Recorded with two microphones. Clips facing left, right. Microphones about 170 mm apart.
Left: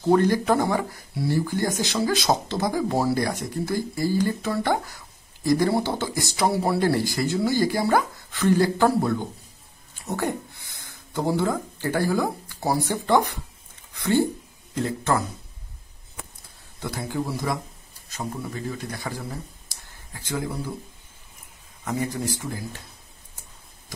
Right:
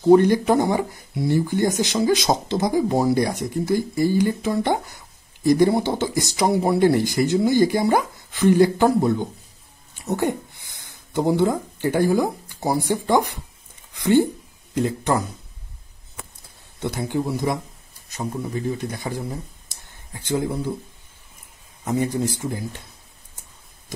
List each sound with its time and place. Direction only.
0.0 s speech: 20° right (ahead or behind)
16.8 s speech: 20° right (ahead or behind)
21.8 s speech: 25° right (ahead or behind)